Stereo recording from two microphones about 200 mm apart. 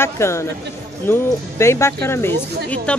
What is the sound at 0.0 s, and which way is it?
Speech, 15° left (ahead or behind).